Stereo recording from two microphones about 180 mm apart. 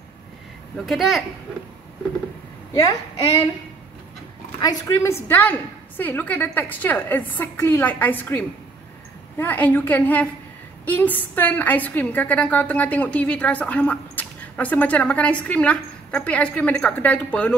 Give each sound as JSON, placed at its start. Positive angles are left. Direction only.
{"t": 0.8, "sound": "speech", "side_deg": 0}
{"t": 2.7, "sound": "a woman's voice", "side_deg": 20}
{"t": 4.6, "sound": "a woman's voice", "side_deg": 20}